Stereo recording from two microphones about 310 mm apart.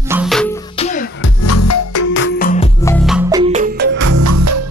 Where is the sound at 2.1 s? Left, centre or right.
Left.